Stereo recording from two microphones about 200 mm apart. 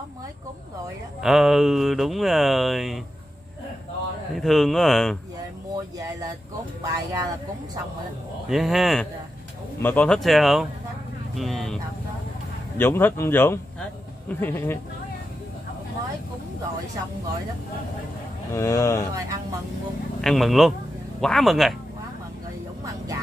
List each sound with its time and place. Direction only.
1.2 s speech: centre (ahead or behind)
4.4 s speech: centre (ahead or behind)
6.8 s speech: 20° right (ahead or behind)
8.5 s speech: centre (ahead or behind)
18.5 s speech: 15° left (ahead or behind)
20.2 s speech: centre (ahead or behind)